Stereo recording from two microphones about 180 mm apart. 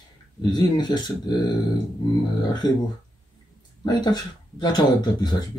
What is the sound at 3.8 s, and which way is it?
Speech, 25° left (ahead or behind).